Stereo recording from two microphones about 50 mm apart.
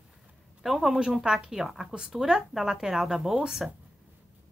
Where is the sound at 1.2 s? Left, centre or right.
Centre.